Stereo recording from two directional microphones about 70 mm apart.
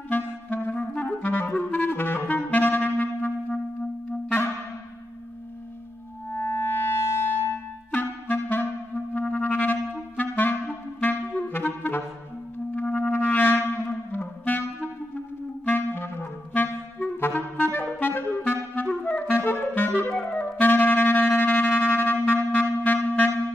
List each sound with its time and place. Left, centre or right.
0.1 s clarinet: left
6.3 s music: left
8.9 s clarinet: left
12.7 s music: left
14.1 s clarinet: left
22.9 s wind instrument: left